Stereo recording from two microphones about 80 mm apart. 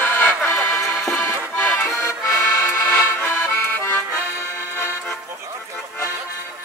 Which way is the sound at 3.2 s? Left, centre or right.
Left.